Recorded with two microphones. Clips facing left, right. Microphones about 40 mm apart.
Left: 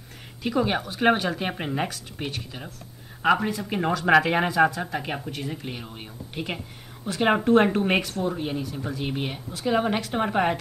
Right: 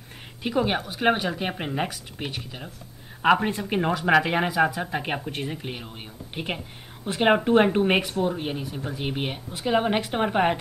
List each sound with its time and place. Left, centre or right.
0.4 s speech: centre
0.7 s speech: centre
4.0 s speech: centre
4.6 s speech: centre